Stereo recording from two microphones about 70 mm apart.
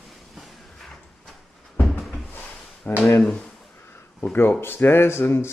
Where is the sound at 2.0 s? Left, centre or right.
Left.